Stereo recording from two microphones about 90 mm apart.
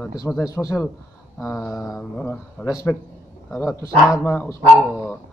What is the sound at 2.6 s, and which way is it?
Speech, 15° left (ahead or behind).